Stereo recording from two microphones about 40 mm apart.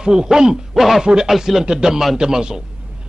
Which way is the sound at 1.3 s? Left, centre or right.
Centre.